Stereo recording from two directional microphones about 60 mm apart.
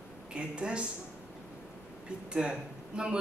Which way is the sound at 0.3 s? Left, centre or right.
Centre.